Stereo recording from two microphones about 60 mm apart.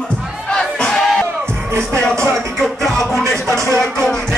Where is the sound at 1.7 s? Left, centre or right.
Right.